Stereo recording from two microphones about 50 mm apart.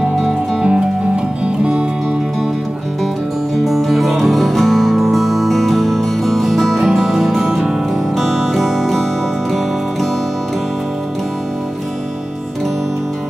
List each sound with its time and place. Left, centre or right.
0.1 s music: centre
0.7 s music: right
3.6 s music: centre
7.9 s music: centre